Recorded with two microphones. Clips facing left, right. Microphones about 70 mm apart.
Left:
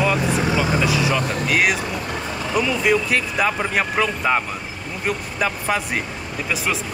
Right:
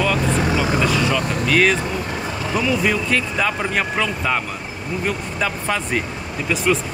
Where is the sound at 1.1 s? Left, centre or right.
Centre.